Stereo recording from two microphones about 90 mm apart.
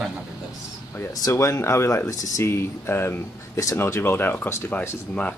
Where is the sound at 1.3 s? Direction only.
30° left (ahead or behind).